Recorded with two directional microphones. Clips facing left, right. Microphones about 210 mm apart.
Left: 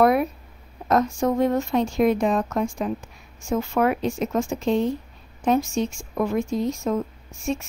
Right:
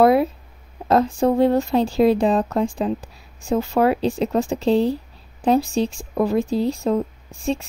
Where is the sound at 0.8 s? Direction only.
30° right (ahead or behind).